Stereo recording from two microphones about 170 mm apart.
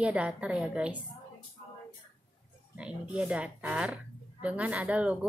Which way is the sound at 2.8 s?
5° right (ahead or behind).